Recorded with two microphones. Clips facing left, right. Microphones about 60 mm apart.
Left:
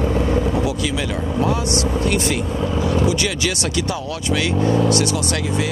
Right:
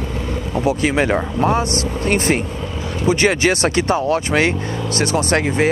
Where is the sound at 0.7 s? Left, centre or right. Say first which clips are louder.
Right 6 dB; right.